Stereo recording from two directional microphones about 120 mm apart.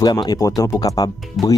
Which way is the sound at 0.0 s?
35° left (ahead or behind).